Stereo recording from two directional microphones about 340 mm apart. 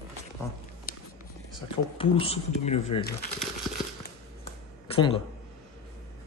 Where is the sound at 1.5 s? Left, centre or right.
Centre.